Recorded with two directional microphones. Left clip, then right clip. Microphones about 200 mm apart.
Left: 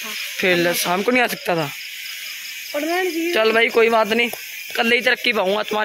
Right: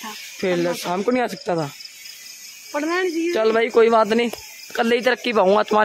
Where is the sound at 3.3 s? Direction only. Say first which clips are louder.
Left 3 dB; 10° right (ahead or behind); by 5.8 s 25° right (ahead or behind).